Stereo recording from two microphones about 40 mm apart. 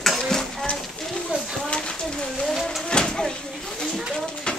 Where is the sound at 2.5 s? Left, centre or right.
Centre.